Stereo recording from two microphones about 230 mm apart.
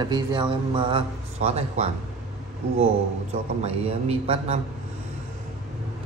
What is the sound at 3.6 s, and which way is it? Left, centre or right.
Speech, right.